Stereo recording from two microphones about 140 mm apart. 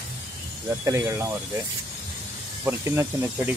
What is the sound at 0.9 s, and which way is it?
Speech, 20° right (ahead or behind).